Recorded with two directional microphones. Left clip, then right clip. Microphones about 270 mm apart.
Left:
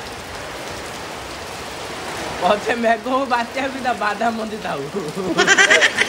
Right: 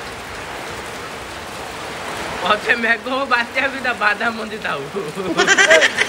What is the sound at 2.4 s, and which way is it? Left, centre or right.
Speech, centre.